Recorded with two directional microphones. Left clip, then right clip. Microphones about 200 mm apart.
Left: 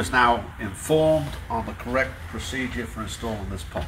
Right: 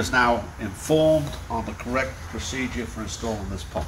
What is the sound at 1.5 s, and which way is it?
Speech, 10° left (ahead or behind).